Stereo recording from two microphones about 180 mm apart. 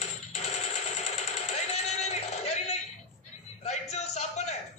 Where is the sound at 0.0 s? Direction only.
40° left (ahead or behind).